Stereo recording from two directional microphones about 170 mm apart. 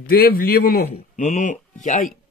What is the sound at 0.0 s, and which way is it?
Speech, 60° left (ahead or behind).